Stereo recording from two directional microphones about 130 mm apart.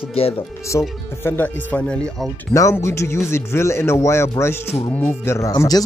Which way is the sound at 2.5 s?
25° left (ahead or behind).